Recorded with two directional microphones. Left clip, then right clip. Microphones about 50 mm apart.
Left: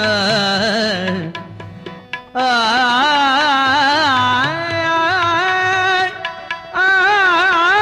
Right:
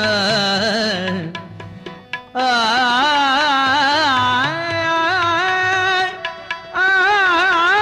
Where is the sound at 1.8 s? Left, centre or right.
Right.